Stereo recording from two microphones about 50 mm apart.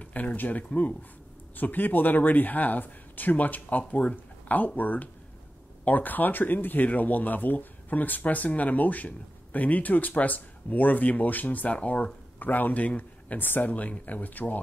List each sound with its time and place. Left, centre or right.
0.0 s speech: left
12.4 s speech: left